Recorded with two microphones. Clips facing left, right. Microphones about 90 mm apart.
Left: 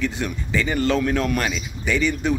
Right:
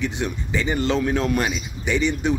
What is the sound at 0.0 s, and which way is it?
A man's voice, 20° right (ahead or behind).